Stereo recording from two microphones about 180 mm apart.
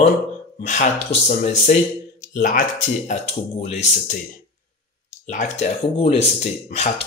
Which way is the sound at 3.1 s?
35° left (ahead or behind).